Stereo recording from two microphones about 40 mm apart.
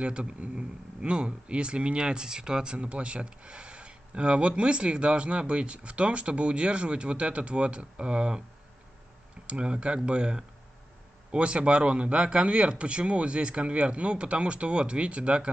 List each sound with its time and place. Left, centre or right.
0.0 s speech: right
9.5 s speech: right